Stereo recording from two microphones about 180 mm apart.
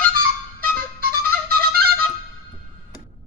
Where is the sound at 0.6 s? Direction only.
60° right (ahead or behind).